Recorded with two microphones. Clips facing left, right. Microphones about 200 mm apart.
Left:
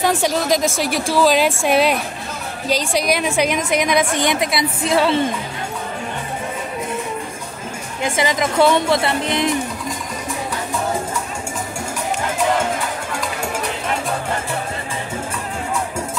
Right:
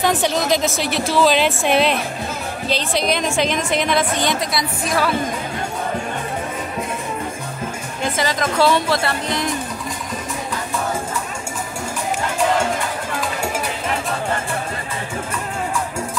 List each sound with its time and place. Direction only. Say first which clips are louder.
0.0 s a woman's voice: even; 10° left (ahead or behind); by 5.2 s 25° left (ahead or behind)
8.0 s a woman's voice: left 2 dB; 20° left (ahead or behind)